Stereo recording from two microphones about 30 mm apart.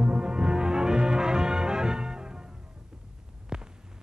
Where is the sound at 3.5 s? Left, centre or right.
Right.